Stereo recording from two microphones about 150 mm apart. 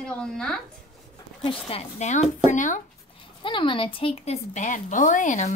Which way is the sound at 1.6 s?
45° left (ahead or behind).